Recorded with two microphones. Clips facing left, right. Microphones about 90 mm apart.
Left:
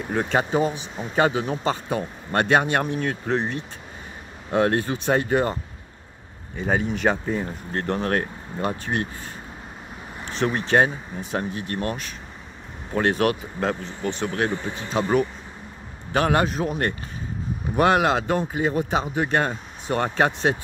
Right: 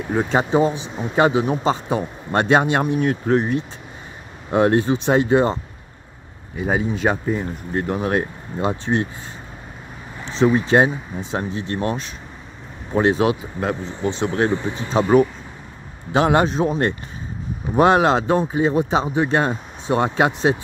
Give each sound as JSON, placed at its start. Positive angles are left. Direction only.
{"t": 0.1, "sound": "speech", "side_deg": -15}
{"t": 4.5, "sound": "speech", "side_deg": -20}
{"t": 6.5, "sound": "speech", "side_deg": -10}
{"t": 10.4, "sound": "speech", "side_deg": -10}
{"t": 16.1, "sound": "speech", "side_deg": -20}